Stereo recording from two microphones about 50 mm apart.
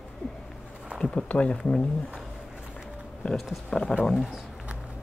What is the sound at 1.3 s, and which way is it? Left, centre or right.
Speech, left.